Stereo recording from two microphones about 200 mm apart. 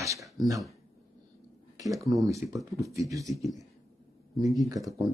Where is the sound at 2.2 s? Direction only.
15° right (ahead or behind).